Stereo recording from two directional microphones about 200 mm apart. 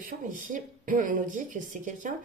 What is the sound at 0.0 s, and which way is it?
Speech, 40° right (ahead or behind).